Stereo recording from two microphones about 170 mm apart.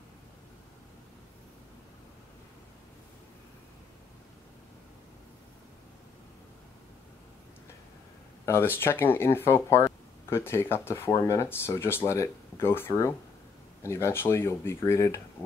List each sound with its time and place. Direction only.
8.5 s speech: 15° left (ahead or behind)